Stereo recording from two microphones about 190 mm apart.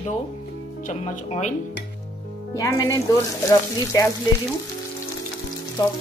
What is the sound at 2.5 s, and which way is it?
Frying, 15° left (ahead or behind).